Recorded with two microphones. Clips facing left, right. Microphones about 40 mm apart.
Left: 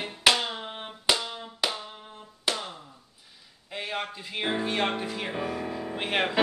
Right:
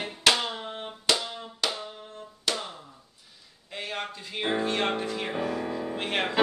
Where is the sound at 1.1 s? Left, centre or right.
Centre.